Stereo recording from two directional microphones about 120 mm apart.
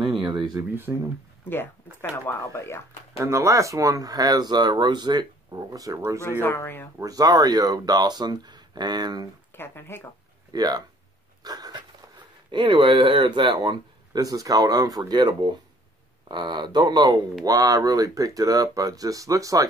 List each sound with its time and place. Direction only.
0.0 s a sound: 40° right (ahead or behind)
0.6 s speech: 15° right (ahead or behind)
1.5 s speech: 20° left (ahead or behind)
3.2 s speech: 25° right (ahead or behind)
6.4 s speech: 20° left (ahead or behind)
7.0 s speech: 30° right (ahead or behind)
9.5 s speech: 20° left (ahead or behind)
10.5 s speech: 35° right (ahead or behind)
11.4 s a sound: 35° right (ahead or behind)
12.4 s speech: 40° right (ahead or behind)